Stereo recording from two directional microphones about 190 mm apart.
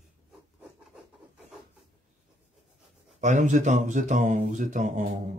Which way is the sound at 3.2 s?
40° right (ahead or behind).